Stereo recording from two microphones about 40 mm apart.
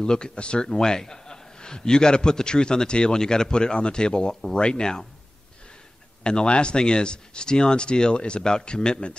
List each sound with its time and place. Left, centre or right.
0.0 s a man's voice: left
6.2 s a man's voice: left